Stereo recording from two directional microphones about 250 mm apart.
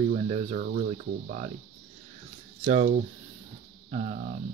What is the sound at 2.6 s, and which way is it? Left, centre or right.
Speech, right.